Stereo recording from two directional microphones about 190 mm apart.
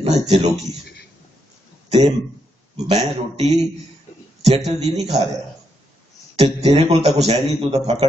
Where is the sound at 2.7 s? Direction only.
35° right (ahead or behind).